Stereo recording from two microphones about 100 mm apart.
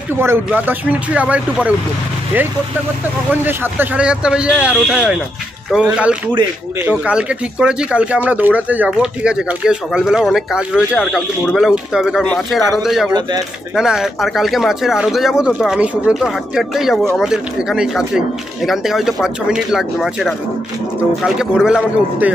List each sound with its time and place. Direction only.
0.1 s speech: 25° right (ahead or behind)
3.4 s speech: 20° right (ahead or behind)